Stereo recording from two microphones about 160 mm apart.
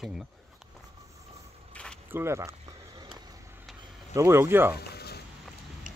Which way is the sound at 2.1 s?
15° right (ahead or behind).